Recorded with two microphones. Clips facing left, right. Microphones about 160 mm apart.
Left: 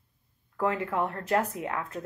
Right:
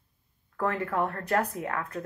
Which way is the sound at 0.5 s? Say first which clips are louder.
Even; 15° left (ahead or behind).